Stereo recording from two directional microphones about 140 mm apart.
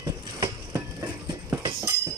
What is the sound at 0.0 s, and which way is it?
Train, 25° right (ahead or behind).